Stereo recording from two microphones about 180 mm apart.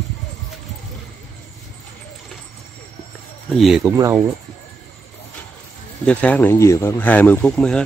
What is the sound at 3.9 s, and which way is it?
Speech, 15° right (ahead or behind).